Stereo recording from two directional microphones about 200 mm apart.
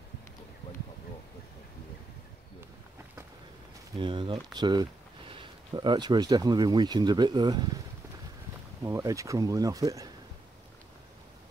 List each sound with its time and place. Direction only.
4.0 s speech: 25° right (ahead or behind)
8.8 s speech: 15° right (ahead or behind)